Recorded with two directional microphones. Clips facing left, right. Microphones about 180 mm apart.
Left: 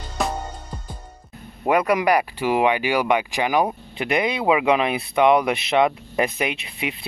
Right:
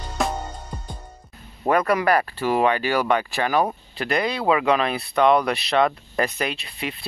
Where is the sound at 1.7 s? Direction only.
15° left (ahead or behind).